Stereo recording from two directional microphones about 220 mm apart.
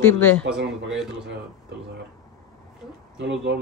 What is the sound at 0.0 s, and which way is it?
Speech, 10° left (ahead or behind).